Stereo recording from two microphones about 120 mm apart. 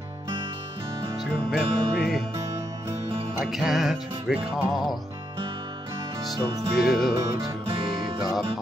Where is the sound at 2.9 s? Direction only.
55° right (ahead or behind).